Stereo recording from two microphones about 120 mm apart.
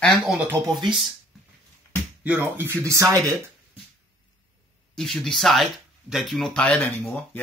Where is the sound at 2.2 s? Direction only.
15° right (ahead or behind).